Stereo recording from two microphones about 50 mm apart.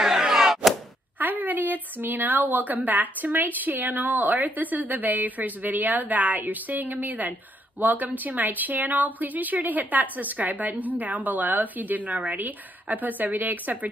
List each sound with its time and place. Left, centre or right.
0.0 s whack: centre
1.2 s a woman's voice: right